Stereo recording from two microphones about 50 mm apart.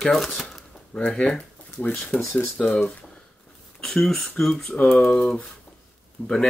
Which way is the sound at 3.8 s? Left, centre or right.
Centre.